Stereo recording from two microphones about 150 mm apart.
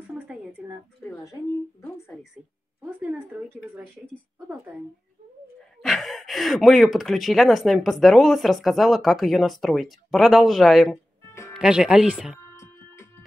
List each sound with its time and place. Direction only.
0.0 s a sound: 10° right (ahead or behind)
1.8 s speech: 15° left (ahead or behind)
2.8 s a woman's voice: 10° right (ahead or behind)
3.9 s speech: 10° left (ahead or behind)
5.8 s speech: centre (ahead or behind)
12.5 s music: 20° left (ahead or behind)